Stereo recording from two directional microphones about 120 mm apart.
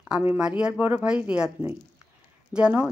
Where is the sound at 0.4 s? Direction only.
5° right (ahead or behind).